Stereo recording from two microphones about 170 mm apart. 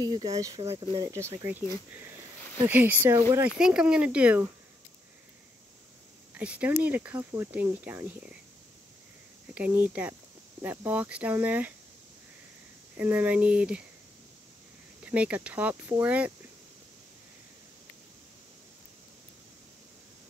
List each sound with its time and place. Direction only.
0.0 s speech: 25° right (ahead or behind)
2.6 s speech: 10° right (ahead or behind)
6.3 s speech: 10° right (ahead or behind)
9.5 s speech: 10° right (ahead or behind)
12.9 s speech: 10° right (ahead or behind)
15.0 s speech: 10° right (ahead or behind)